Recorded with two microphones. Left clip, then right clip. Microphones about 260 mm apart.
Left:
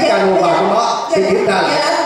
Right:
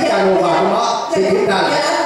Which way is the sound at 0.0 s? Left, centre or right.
Centre.